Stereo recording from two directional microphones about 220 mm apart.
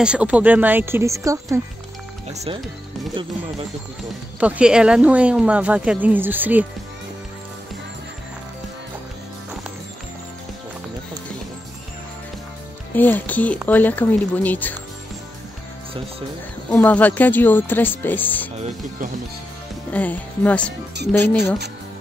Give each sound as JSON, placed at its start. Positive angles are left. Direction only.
{"t": 0.0, "sound": "speech", "side_deg": -5}
{"t": 2.3, "sound": "speech", "side_deg": -30}
{"t": 4.4, "sound": "speech", "side_deg": -5}
{"t": 12.9, "sound": "speech", "side_deg": 10}
{"t": 16.7, "sound": "speech", "side_deg": 5}
{"t": 19.9, "sound": "speech", "side_deg": 5}